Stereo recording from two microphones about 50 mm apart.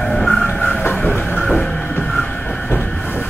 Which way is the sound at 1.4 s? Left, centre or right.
Left.